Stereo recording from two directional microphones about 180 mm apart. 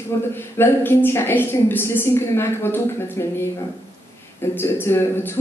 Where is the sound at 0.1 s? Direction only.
15° left (ahead or behind).